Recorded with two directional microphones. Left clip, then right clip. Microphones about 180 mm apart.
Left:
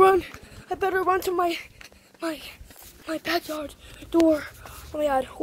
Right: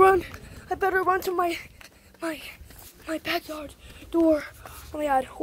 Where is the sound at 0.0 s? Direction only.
10° right (ahead or behind).